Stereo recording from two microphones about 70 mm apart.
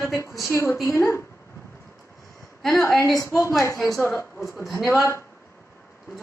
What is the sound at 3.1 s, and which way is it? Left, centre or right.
A woman's voice, left.